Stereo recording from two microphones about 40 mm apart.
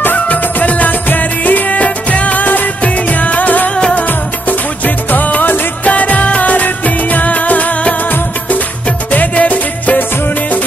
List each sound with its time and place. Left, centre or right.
0.0 s music: left
2.8 s music: left